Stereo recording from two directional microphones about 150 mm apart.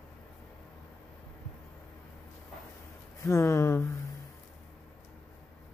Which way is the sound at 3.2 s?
20° left (ahead or behind).